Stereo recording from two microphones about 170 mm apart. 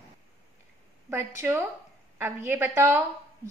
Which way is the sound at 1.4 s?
10° right (ahead or behind).